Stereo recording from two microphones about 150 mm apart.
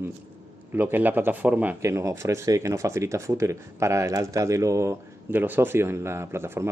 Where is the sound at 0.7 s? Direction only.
10° right (ahead or behind).